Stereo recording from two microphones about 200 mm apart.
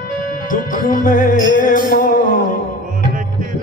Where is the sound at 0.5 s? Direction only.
40° left (ahead or behind).